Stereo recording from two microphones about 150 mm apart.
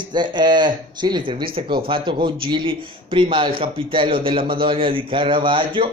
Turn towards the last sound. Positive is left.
turn(degrees=-35)  # may be behind; listen again after turning